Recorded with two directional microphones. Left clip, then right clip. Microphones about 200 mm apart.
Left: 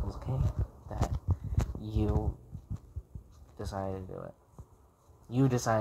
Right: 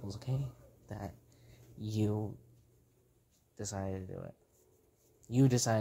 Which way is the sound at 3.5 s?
25° right (ahead or behind).